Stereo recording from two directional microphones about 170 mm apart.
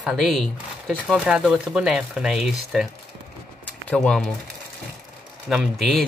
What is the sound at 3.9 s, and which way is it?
Speech, 5° left (ahead or behind).